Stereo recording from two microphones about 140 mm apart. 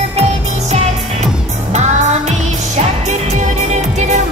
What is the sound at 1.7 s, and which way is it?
Music, 55° right (ahead or behind).